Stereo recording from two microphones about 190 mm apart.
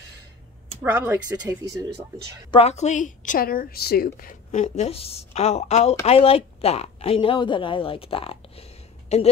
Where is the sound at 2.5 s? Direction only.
35° left (ahead or behind).